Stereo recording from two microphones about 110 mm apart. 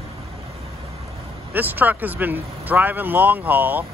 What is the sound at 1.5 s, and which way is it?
Speech, 15° right (ahead or behind).